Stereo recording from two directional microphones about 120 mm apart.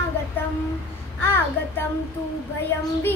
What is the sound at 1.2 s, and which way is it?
Child singing, 15° left (ahead or behind).